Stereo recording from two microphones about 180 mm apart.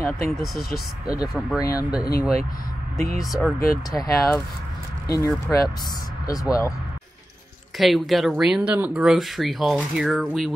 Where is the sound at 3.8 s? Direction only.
20° left (ahead or behind).